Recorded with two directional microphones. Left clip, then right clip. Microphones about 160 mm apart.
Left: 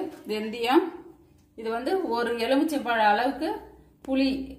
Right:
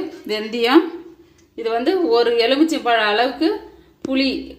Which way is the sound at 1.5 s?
35° right (ahead or behind).